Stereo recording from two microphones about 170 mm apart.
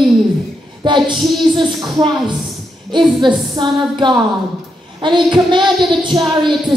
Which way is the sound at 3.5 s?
25° right (ahead or behind).